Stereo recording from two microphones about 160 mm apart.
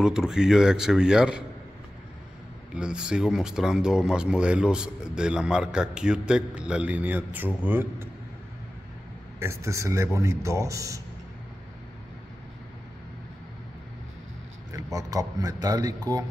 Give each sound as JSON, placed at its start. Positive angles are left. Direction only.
{"t": 0.0, "sound": "speech", "side_deg": -5}
{"t": 2.7, "sound": "speech", "side_deg": -5}
{"t": 9.4, "sound": "speech", "side_deg": -20}
{"t": 14.7, "sound": "speech", "side_deg": -20}